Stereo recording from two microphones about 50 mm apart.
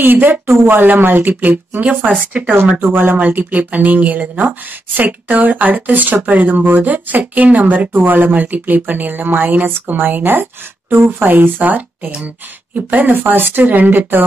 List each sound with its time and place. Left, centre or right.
0.0 s speech: right
2.8 s speech: right
3.2 s speech: right